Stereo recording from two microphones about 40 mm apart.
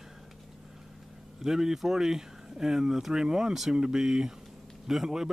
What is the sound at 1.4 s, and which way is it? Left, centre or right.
Speech, centre.